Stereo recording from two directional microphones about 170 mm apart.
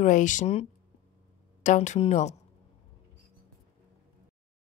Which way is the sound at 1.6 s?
45° left (ahead or behind).